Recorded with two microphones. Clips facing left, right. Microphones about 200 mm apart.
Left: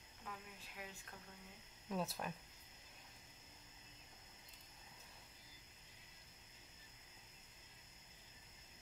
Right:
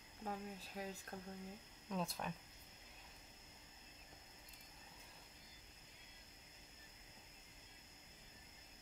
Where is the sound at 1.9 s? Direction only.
5° left (ahead or behind).